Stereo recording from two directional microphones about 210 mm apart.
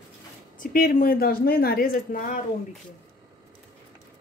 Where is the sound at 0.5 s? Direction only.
40° left (ahead or behind).